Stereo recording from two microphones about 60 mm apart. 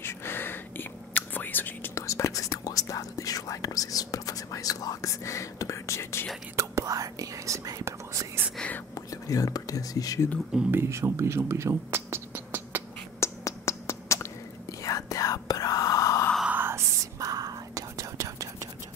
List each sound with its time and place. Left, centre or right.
0.0 s whispering: left
2.0 s whispering: left
6.5 s whispering: right
6.9 s whispering: right
8.9 s whispering: left
10.7 s speech: right
13.2 s a sound: left
14.8 s whispering: left
16.5 s whispering: right
17.0 s whispering: right